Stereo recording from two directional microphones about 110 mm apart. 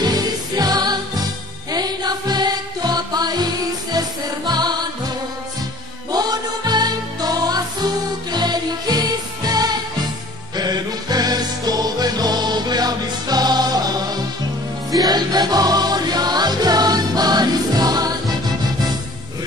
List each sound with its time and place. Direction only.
0.0 s music: 35° right (ahead or behind)
4.5 s music: 40° right (ahead or behind)
6.1 s music: 40° right (ahead or behind)